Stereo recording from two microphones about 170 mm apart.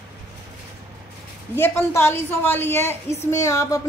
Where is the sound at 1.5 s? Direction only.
15° left (ahead or behind).